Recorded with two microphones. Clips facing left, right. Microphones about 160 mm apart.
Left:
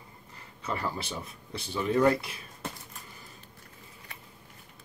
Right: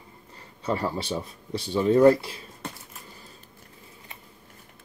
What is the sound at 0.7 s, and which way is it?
Speech, 30° right (ahead or behind).